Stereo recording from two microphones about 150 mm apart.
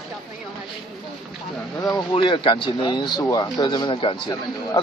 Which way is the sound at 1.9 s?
30° left (ahead or behind).